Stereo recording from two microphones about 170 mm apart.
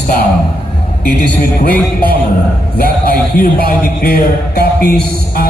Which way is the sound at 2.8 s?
60° left (ahead or behind).